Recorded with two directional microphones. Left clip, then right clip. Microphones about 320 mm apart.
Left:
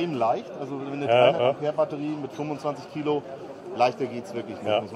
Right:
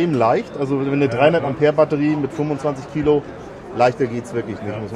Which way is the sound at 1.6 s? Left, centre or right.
Right.